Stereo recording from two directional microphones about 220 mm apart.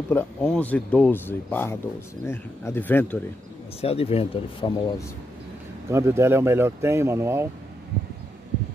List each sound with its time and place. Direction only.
0.1 s speech: 5° left (ahead or behind)
3.8 s speech: 25° left (ahead or behind)
5.9 s speech: 10° right (ahead or behind)